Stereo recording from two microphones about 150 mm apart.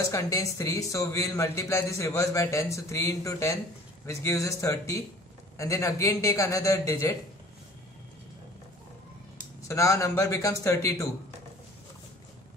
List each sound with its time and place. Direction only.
0.0 s a man's voice: 20° left (ahead or behind)
9.6 s a man's voice: 20° left (ahead or behind)